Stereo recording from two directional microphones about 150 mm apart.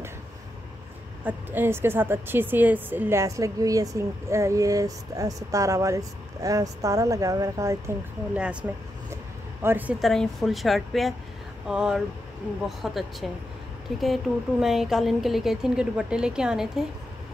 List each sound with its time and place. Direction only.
1.2 s a woman's voice: 15° right (ahead or behind)
9.1 s vehicle: 15° right (ahead or behind)
10.0 s speech: centre (ahead or behind)